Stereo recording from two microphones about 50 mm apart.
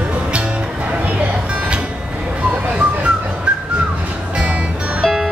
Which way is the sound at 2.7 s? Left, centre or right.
Right.